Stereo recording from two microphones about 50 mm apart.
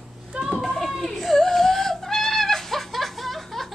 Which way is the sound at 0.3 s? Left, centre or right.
Right.